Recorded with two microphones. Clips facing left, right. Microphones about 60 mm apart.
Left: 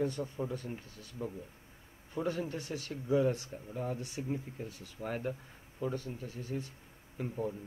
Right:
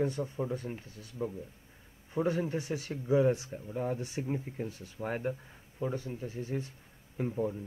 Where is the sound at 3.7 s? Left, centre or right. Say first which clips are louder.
Right 4 dB; right.